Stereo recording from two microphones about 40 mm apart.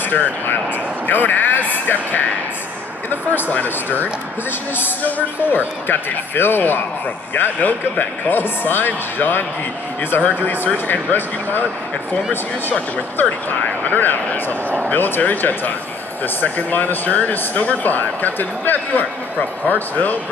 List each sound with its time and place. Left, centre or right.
1.0 s speech: left
3.4 s speech: left
4.5 s speech: left
7.3 s speech: left
13.2 s speech: left
17.3 s speech: left